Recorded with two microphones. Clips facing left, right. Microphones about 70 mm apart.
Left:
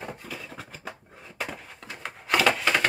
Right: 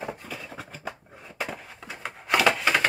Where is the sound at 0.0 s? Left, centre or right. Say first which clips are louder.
Right 2 dB; centre.